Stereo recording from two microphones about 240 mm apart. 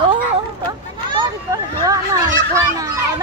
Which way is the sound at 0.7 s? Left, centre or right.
Centre.